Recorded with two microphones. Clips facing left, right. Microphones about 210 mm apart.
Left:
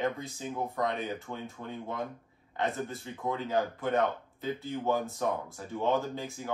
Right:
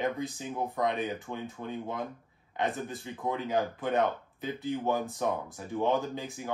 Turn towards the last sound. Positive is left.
turn(degrees=-15)  # may be behind; listen again after turning